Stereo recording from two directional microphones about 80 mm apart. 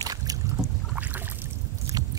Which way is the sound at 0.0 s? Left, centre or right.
Right.